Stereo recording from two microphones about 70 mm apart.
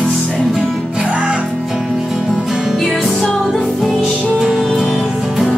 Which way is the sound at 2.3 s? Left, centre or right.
Centre.